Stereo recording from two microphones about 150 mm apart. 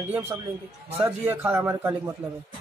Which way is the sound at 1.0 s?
15° right (ahead or behind).